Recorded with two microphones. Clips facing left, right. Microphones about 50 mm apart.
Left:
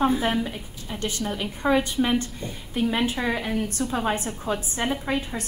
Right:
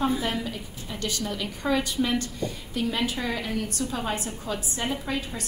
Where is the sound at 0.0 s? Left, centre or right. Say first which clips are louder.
Left 4 dB; left.